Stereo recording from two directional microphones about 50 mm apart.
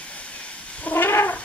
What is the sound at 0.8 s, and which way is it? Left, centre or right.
Cat, left.